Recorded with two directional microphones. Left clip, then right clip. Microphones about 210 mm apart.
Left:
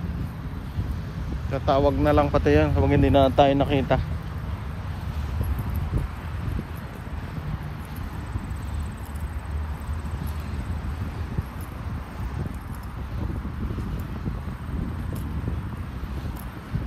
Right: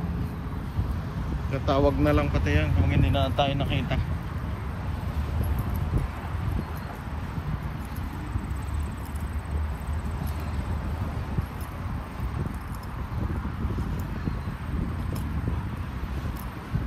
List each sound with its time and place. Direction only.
1.5 s speech: 5° left (ahead or behind); by 3.1 s 20° left (ahead or behind)
3.1 s speech: 75° left (ahead or behind)